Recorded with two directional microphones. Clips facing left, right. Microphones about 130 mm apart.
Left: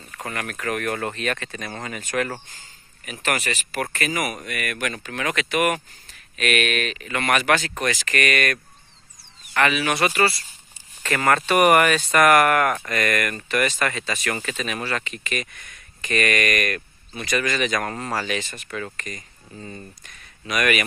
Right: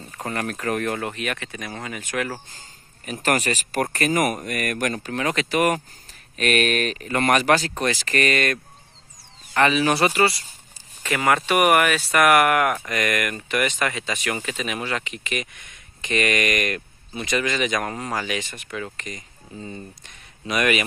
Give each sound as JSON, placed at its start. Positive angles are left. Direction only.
{"t": 0.1, "sound": "speech", "side_deg": -30}
{"t": 0.9, "sound": "speech", "side_deg": -15}
{"t": 3.1, "sound": "speech", "side_deg": -40}
{"t": 11.0, "sound": "speech", "side_deg": -10}